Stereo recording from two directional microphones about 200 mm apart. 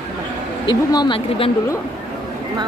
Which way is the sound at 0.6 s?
20° left (ahead or behind).